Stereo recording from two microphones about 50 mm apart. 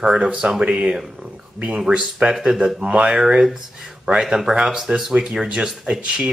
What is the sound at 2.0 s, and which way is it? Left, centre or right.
Speech, centre.